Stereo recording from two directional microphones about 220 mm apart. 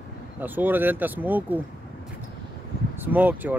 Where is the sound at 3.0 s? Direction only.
10° right (ahead or behind).